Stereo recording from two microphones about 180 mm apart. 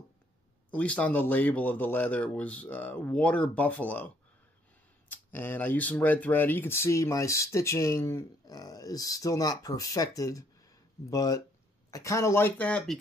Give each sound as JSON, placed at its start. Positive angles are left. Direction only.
{"t": 0.7, "sound": "speech", "side_deg": 5}
{"t": 5.1, "sound": "speech", "side_deg": 10}